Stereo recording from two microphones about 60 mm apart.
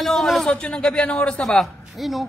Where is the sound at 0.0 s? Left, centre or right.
Centre.